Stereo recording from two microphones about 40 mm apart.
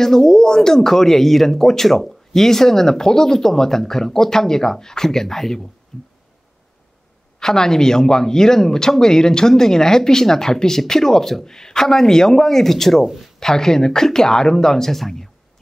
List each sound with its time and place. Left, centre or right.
0.0 s speech: centre
5.9 s a sound: left
7.3 s speech: centre
13.0 s speech: centre
13.4 s speech: centre